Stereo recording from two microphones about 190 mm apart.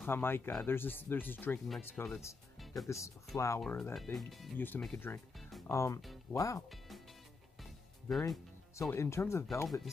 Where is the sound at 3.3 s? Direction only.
15° left (ahead or behind).